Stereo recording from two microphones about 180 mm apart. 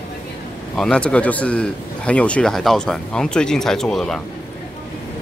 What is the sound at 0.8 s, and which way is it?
A man's voice, 5° left (ahead or behind).